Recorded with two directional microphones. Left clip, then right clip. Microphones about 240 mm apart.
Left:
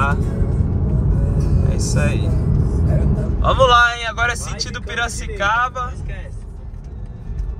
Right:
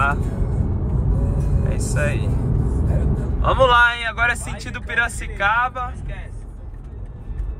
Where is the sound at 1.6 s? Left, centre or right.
Centre.